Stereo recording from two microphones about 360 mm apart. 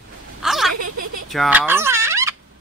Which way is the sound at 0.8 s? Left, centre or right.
Right.